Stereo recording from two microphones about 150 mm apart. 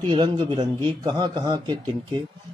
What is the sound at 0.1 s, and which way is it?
Speech, 35° right (ahead or behind).